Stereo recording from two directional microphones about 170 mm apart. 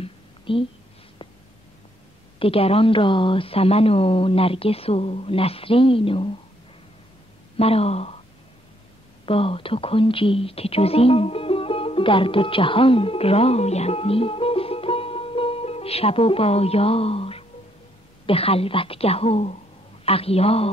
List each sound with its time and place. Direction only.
0.0 s a sound: 30° left (ahead or behind)
2.3 s speech: 35° left (ahead or behind)
7.5 s speech: 35° left (ahead or behind)
9.2 s speech: 35° left (ahead or behind)